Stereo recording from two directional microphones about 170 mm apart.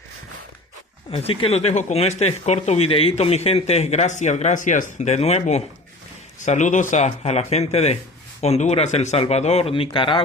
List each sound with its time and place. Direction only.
1.1 s speech: 30° left (ahead or behind)